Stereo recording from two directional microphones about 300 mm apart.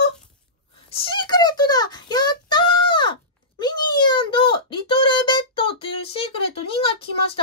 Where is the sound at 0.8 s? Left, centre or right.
Centre.